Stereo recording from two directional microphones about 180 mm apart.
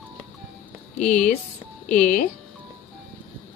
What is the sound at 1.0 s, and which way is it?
A woman's voice, 40° left (ahead or behind).